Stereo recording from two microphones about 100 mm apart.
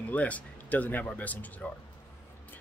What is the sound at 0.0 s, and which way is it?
Speech, 15° left (ahead or behind).